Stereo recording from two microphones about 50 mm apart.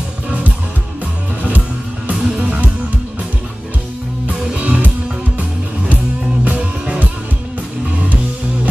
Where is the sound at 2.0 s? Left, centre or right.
Right.